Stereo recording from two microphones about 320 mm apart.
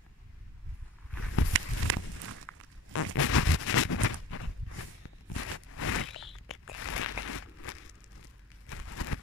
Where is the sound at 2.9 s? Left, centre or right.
Left.